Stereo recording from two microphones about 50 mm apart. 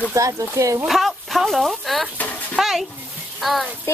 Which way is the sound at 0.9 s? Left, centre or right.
Centre.